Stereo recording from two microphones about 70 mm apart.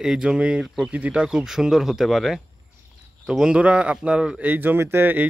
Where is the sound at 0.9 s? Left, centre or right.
Right.